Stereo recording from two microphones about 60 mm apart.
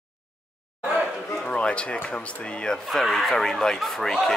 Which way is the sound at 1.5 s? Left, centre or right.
Centre.